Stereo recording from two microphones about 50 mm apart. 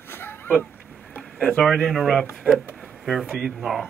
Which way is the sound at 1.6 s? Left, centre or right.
Centre.